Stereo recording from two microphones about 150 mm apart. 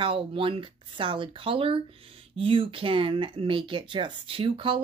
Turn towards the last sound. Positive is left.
turn(degrees=-35)  # may be behind; listen again after turning